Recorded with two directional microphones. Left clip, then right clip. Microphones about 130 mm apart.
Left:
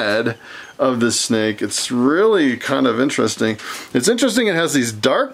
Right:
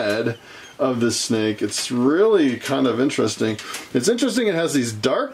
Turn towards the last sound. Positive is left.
turn(degrees=35)  # may be behind; listen again after turning